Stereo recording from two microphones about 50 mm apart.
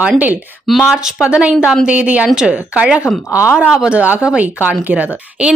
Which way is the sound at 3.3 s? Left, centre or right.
Left.